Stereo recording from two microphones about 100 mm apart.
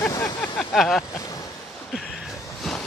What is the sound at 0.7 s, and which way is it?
Speech, centre (ahead or behind).